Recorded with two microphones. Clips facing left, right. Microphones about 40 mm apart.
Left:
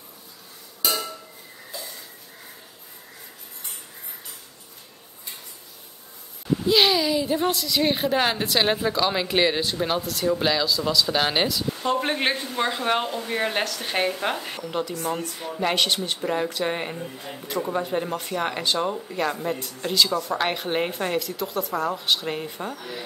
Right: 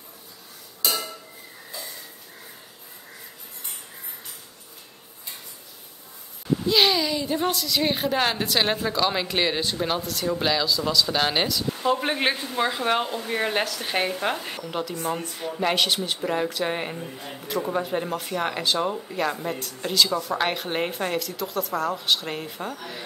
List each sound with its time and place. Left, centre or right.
6.6 s speech: centre
15.0 s speech: centre
15.3 s speech: centre